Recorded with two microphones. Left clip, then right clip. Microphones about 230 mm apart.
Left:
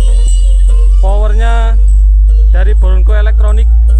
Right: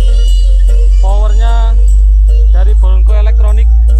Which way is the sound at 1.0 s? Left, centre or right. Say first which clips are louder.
Left 3 dB; left.